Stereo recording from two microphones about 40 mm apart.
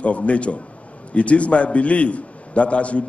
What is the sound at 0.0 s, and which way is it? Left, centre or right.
A man's voice, left.